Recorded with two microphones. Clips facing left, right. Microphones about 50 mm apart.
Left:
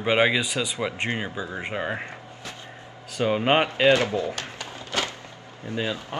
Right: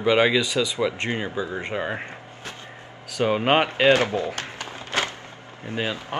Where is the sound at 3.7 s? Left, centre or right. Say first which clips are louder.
Right 1 dB; right.